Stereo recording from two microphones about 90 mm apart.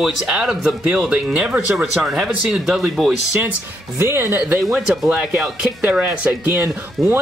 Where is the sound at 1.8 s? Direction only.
5° right (ahead or behind).